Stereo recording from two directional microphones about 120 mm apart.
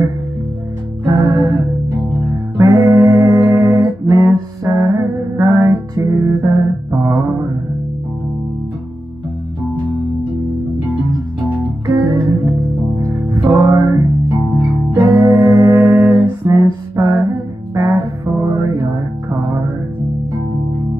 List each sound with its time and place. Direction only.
1.2 s music: 30° right (ahead or behind)
2.5 s music: 30° right (ahead or behind)
11.4 s music: 30° right (ahead or behind)